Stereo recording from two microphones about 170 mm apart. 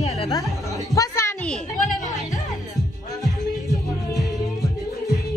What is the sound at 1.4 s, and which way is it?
Speech, 5° left (ahead or behind).